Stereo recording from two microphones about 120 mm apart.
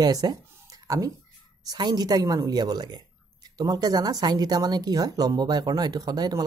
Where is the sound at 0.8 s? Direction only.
30° right (ahead or behind).